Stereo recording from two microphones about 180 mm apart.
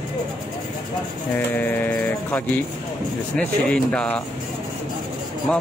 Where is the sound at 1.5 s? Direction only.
10° left (ahead or behind).